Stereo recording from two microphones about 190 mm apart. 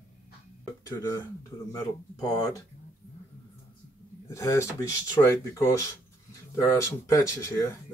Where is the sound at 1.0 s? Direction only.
20° left (ahead or behind).